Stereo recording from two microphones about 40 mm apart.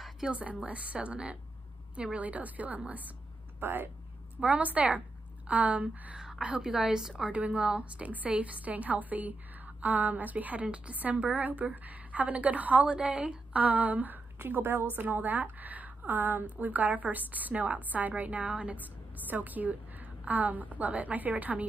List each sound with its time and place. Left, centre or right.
0.3 s a woman's voice: right
3.5 s speech: right
4.4 s a woman's voice: right
6.6 s a woman's voice: centre
7.2 s a woman's voice: right
12.8 s a woman's voice: right
13.5 s a woman's voice: right